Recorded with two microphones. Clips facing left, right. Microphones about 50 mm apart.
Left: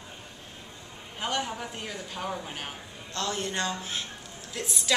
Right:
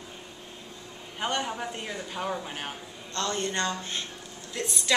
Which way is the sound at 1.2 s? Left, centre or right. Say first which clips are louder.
Right 1 dB; centre.